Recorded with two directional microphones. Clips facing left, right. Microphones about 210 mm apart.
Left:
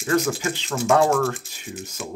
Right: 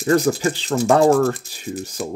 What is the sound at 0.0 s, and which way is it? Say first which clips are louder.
Speech: right 5 dB; 35° right (ahead or behind).